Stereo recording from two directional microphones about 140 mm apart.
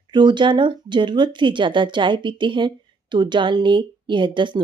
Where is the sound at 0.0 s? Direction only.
35° right (ahead or behind).